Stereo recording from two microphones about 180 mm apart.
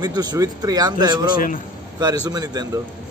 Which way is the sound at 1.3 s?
50° left (ahead or behind).